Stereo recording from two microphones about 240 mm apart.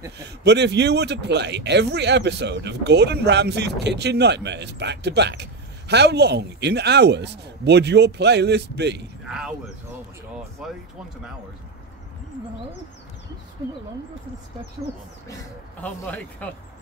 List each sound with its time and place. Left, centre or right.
0.2 s speech: right
10.6 s speech: centre
15.8 s speech: centre